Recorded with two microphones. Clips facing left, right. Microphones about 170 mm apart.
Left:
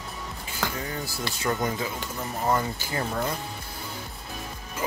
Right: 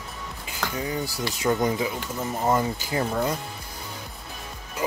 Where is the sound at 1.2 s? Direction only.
15° right (ahead or behind).